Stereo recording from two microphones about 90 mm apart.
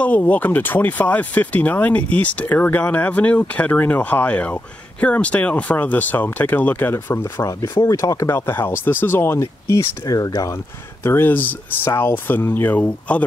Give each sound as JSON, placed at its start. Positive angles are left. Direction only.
{"t": 0.0, "sound": "speech", "side_deg": 15}
{"t": 9.4, "sound": "speech", "side_deg": 35}
{"t": 11.1, "sound": "speech", "side_deg": 20}